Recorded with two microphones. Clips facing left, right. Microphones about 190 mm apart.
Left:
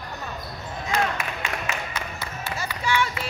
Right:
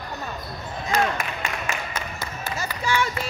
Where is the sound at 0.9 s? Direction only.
45° right (ahead or behind).